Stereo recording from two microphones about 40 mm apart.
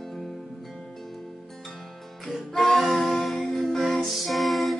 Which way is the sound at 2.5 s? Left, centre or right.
Left.